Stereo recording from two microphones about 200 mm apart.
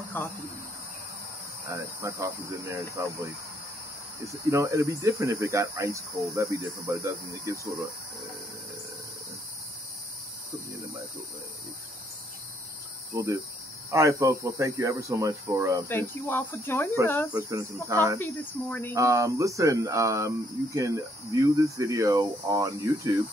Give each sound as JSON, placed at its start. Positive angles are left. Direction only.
{"t": 0.2, "sound": "speech", "side_deg": 10}
{"t": 1.7, "sound": "speech", "side_deg": -15}
{"t": 4.3, "sound": "speech", "side_deg": -15}
{"t": 13.1, "sound": "speech", "side_deg": -15}
{"t": 15.9, "sound": "speech", "side_deg": 10}
{"t": 17.3, "sound": "speech", "side_deg": -15}
{"t": 18.2, "sound": "speech", "side_deg": 10}
{"t": 18.9, "sound": "speech", "side_deg": -15}